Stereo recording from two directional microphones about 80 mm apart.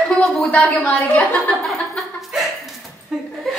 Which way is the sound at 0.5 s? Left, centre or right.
Centre.